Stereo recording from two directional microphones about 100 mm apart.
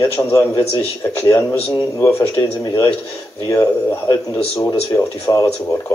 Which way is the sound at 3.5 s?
30° left (ahead or behind).